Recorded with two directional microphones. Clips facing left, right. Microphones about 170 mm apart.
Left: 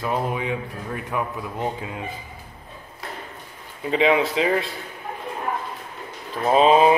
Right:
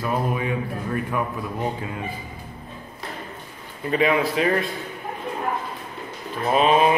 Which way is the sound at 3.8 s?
20° left (ahead or behind).